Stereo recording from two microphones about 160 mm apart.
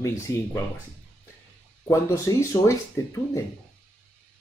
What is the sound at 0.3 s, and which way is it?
Speech, 20° left (ahead or behind).